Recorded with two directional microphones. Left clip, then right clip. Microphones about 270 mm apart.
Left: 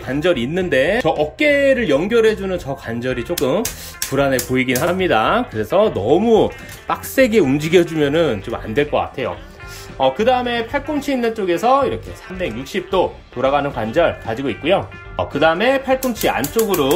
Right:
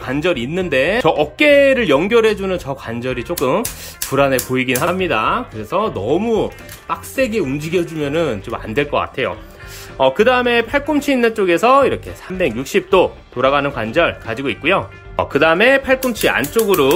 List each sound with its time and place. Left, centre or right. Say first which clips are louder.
0.0 s speech: even; centre